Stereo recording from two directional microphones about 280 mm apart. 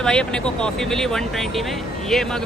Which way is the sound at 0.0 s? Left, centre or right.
Centre.